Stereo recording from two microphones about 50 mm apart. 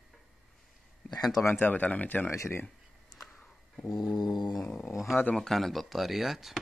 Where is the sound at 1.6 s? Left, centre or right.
Left.